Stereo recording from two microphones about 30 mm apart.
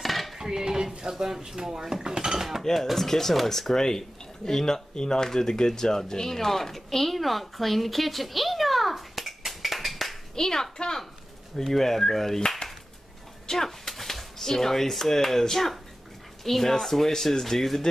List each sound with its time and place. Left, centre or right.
0.0 s cutlery: centre
0.4 s cutlery: centre
1.1 s speech: centre
2.9 s speech: centre
10.3 s speech: centre
12.4 s a sound: left
13.5 s speech: centre
16.4 s speech: centre